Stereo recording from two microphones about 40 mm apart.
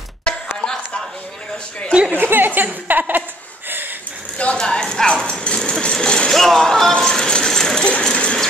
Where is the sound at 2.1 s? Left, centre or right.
Right.